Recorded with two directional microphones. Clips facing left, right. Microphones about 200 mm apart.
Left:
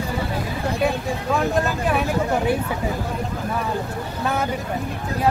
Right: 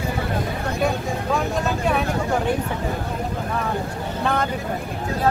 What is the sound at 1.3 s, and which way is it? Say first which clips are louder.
Speech: left 2 dB; centre (ahead or behind).